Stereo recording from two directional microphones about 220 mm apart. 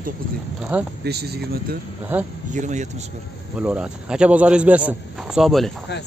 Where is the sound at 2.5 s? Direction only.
35° right (ahead or behind).